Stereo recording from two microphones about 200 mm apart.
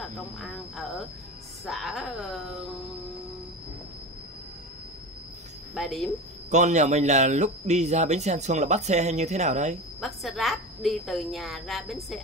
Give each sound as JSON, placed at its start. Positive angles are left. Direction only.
{"t": 0.4, "sound": "a sound", "side_deg": 0}
{"t": 1.7, "sound": "a woman's voice", "side_deg": 0}
{"t": 5.8, "sound": "a woman's voice", "side_deg": 0}
{"t": 6.5, "sound": "speech", "side_deg": -35}
{"t": 9.9, "sound": "a woman's voice", "side_deg": 0}